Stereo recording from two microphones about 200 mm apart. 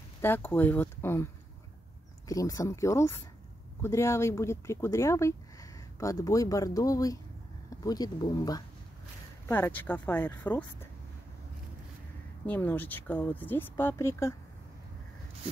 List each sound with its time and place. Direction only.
0.2 s speech: 10° left (ahead or behind)
12.4 s speech: 10° left (ahead or behind)